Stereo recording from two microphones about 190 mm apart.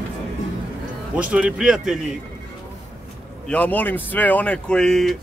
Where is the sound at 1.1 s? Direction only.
5° right (ahead or behind).